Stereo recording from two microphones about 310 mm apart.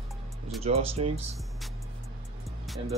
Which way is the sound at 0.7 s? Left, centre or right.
Centre.